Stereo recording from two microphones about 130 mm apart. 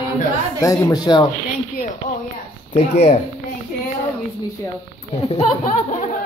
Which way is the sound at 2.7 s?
65° left (ahead or behind).